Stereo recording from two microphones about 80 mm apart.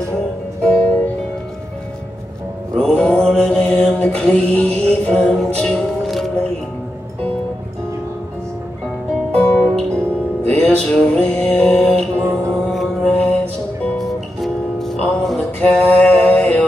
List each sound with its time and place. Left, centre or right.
0.6 s music: centre
2.7 s mantra: centre
5.4 s music: centre
9.3 s music: centre
12.2 s music: right
12.6 s mantra: centre
13.9 s music: centre